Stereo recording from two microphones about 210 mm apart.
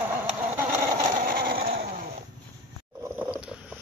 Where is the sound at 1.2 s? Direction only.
45° right (ahead or behind).